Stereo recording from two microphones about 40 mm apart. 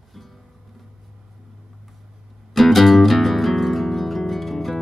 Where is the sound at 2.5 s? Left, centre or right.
Centre.